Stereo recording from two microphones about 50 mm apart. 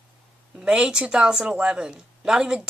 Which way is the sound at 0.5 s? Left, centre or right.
Centre.